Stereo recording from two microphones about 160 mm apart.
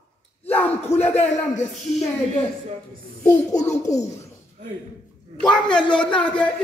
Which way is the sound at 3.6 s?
45° left (ahead or behind).